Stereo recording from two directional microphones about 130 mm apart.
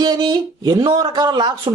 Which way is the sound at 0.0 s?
35° right (ahead or behind).